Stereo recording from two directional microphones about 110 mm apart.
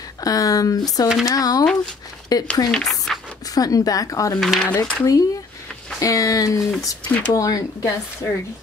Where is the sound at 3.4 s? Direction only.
35° left (ahead or behind).